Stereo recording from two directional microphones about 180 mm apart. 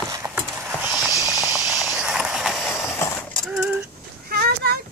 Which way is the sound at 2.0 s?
5° right (ahead or behind).